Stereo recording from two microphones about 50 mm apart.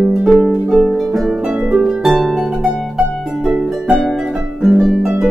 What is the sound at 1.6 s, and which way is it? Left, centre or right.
Harp, centre.